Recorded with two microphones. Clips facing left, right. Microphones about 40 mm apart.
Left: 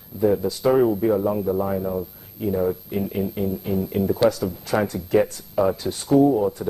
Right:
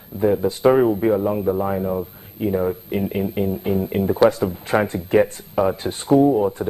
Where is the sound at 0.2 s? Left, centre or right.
Right.